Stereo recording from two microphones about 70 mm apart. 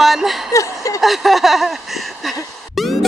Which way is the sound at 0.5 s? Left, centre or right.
Left.